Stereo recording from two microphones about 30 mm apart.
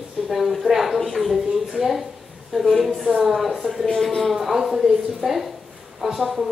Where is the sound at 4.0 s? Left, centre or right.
Centre.